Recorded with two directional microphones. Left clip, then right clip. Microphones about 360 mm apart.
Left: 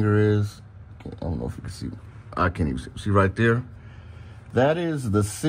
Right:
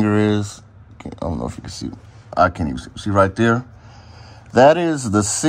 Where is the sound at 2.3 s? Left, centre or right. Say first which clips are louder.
Right 8 dB; centre.